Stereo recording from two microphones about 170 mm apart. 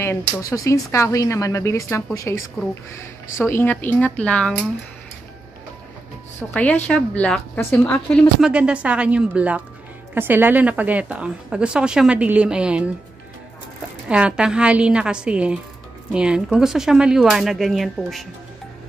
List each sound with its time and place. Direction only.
0.0 s speech: 15° left (ahead or behind)
6.5 s speech: 10° left (ahead or behind)
8.4 s speech: 5° right (ahead or behind)
14.0 s speech: 5° right (ahead or behind)